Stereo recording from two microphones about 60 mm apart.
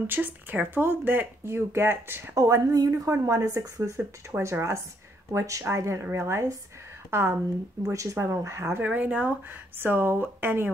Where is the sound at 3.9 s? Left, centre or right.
Right.